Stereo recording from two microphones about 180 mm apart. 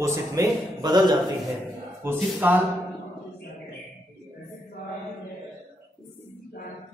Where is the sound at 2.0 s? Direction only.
10° right (ahead or behind).